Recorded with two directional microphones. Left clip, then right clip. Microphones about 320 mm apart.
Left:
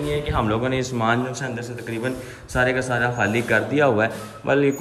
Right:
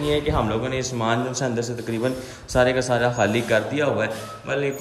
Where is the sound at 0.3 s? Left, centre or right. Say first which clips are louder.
Left 1 dB; centre.